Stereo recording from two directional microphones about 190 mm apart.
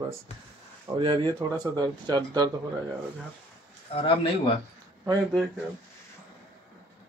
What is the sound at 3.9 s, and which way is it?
Speech, 30° left (ahead or behind).